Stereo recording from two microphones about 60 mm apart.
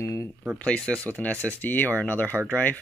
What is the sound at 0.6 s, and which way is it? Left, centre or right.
Speech, centre.